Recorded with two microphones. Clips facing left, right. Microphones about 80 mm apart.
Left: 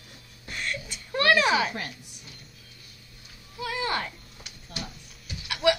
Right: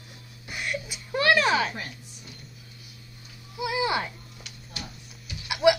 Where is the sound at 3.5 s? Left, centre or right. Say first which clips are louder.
Right 3 dB; centre.